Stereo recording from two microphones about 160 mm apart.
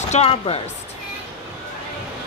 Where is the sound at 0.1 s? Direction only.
40° left (ahead or behind).